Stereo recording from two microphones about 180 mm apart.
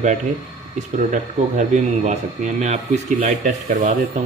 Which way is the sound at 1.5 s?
40° right (ahead or behind).